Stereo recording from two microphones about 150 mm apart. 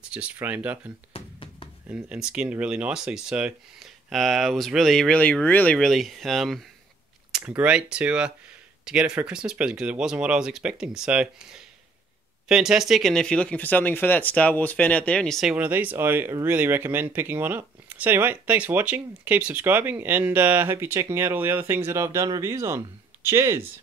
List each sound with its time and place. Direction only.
0.1 s speech: 10° right (ahead or behind)
1.1 s music: 35° left (ahead or behind)
1.9 s speech: 5° right (ahead or behind)
15.5 s speech: 10° right (ahead or behind)